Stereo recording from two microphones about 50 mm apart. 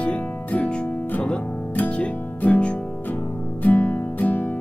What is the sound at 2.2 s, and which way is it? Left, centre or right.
Music, left.